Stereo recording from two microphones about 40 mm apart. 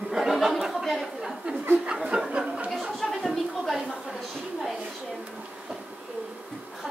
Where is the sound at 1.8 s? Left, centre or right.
Right.